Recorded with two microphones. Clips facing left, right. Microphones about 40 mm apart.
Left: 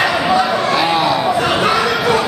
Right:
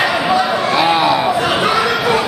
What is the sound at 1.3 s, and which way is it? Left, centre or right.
Chatter, centre.